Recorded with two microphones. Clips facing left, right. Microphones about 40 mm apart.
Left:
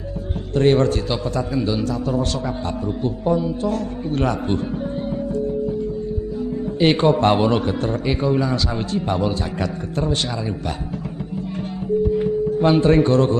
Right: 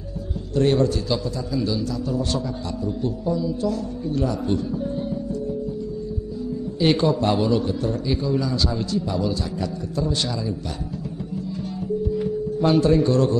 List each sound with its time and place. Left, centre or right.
0.6 s a man's voice: left
3.3 s a man's voice: left
6.8 s a man's voice: left
12.1 s music: left
12.9 s a man's voice: left